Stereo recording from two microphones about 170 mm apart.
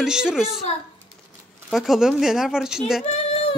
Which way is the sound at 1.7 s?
Centre (ahead or behind).